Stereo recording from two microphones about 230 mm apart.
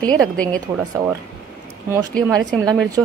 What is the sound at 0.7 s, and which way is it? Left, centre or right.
Speech, centre.